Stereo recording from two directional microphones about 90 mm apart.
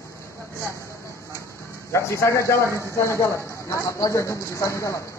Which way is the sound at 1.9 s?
35° left (ahead or behind).